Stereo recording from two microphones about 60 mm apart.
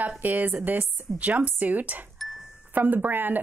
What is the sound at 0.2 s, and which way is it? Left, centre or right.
A woman's voice, right.